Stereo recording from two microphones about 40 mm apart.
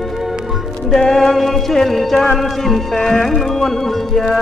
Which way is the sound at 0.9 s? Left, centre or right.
Centre.